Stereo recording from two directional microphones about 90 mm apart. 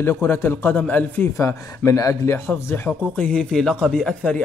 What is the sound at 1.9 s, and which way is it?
Speech, 35° left (ahead or behind).